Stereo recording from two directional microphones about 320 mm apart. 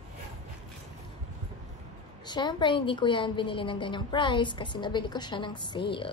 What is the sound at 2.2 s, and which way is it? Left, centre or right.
A woman's voice, centre.